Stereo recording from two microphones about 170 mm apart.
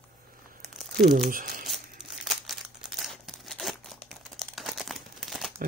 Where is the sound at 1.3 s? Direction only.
55° right (ahead or behind).